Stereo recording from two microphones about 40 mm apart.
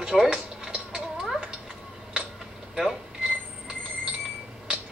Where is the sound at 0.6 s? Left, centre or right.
Centre.